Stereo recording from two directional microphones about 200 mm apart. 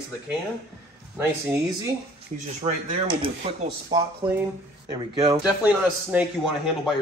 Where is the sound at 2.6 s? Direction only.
30° right (ahead or behind).